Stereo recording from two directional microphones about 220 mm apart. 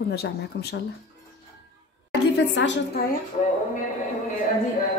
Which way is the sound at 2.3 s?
55° left (ahead or behind).